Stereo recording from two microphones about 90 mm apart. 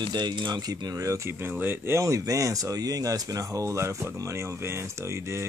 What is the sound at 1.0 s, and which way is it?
Speech, 30° right (ahead or behind).